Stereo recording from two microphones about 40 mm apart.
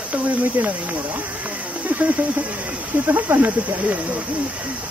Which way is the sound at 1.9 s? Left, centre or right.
Right.